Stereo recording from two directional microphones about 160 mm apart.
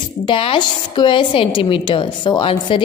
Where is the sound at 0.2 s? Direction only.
30° left (ahead or behind).